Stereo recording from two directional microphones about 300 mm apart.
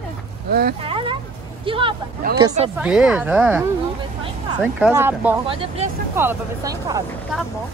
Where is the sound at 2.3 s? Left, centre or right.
Centre.